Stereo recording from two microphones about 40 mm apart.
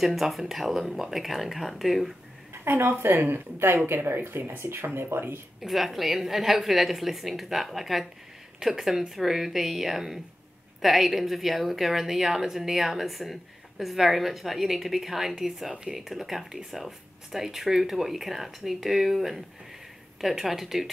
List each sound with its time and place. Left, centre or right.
0.0 s speech: centre
2.6 s speech: right
5.6 s speech: centre